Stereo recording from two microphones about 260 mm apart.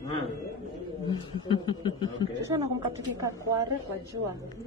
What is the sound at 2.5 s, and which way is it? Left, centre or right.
Speech, centre.